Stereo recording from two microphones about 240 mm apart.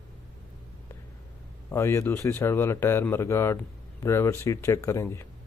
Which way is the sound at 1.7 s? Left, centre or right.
Centre.